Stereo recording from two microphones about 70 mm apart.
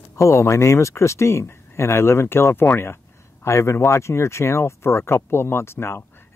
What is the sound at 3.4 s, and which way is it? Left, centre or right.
Speech, left.